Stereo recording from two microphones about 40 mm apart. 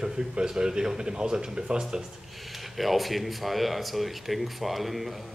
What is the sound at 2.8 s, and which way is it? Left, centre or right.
Speech, centre.